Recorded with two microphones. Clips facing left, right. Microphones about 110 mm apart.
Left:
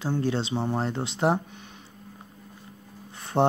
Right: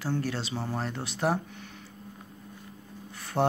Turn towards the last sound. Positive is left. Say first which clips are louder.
# left 4 dB
turn(degrees=25)  # may be behind; listen again after turning